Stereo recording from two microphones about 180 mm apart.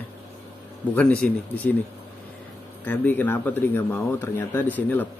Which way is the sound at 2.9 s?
10° left (ahead or behind).